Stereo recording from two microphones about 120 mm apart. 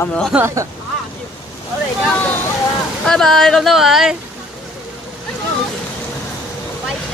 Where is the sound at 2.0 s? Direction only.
10° left (ahead or behind); by 4.1 s 5° right (ahead or behind).